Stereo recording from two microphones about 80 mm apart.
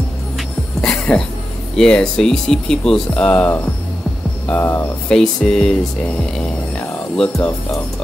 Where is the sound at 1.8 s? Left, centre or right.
Centre.